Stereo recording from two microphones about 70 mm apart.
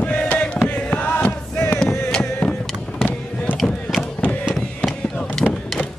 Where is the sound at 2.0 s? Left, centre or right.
Centre.